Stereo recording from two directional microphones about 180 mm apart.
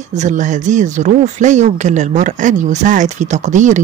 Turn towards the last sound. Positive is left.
turn(degrees=-45)  # may be behind; listen again after turning